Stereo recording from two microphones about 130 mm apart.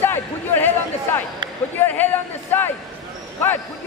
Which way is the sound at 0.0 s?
15° left (ahead or behind).